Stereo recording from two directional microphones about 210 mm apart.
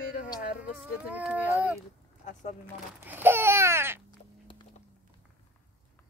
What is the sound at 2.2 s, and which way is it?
Speech, 35° left (ahead or behind).